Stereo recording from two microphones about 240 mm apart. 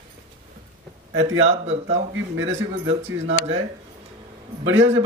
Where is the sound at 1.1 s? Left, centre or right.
Right.